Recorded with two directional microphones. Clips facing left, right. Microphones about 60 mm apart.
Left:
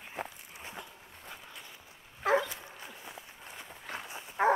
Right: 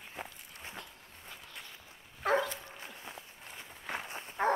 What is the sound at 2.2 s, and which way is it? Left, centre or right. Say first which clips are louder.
Dog: left 2 dB; centre.